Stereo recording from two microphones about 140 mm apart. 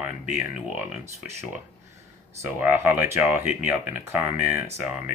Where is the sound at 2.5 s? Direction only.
15° right (ahead or behind).